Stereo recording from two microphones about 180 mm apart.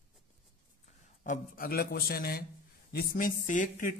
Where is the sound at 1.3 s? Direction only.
55° left (ahead or behind).